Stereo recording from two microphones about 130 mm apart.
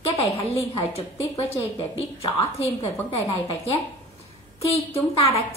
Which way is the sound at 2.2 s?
50° left (ahead or behind).